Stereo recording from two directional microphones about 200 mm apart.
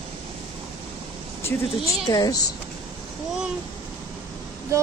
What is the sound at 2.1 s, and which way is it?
Speech, 20° left (ahead or behind).